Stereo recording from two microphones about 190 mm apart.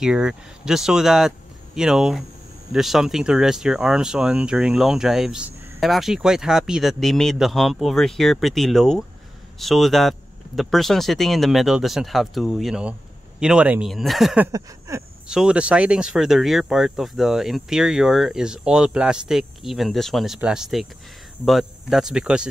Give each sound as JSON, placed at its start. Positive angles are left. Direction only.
{"t": 0.0, "sound": "speech", "side_deg": -5}
{"t": 14.5, "sound": "a sound", "side_deg": -15}
{"t": 15.2, "sound": "speech", "side_deg": -5}